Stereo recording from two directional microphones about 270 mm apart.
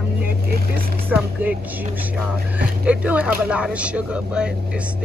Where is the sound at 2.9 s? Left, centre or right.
Centre.